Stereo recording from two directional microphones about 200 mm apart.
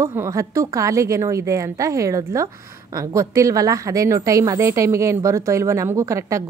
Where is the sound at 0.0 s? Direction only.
15° right (ahead or behind).